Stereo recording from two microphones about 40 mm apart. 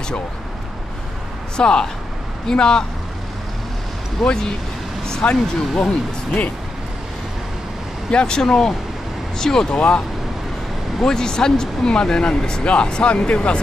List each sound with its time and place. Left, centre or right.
1.6 s speech: left
4.2 s speech: left
8.1 s speech: left
9.8 s speech: left
11.1 s speech: centre